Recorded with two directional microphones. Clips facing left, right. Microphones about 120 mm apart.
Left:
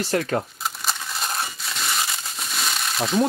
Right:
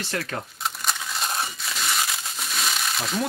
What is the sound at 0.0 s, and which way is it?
Speech, 35° left (ahead or behind).